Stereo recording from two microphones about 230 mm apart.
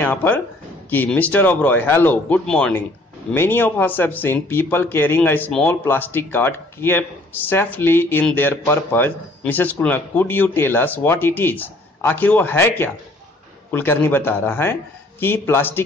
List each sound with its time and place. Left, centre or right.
0.0 s speech: centre